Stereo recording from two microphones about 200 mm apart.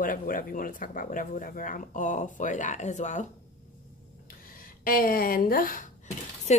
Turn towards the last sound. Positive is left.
turn(degrees=35)  # may be behind; listen again after turning